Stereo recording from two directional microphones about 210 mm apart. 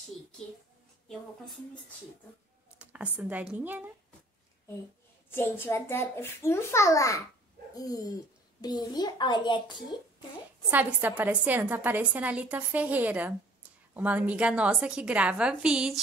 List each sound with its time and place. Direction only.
2.8 s a woman's voice: 5° right (ahead or behind)
5.3 s a child's voice: 10° left (ahead or behind)
10.7 s a woman's voice: 10° right (ahead or behind)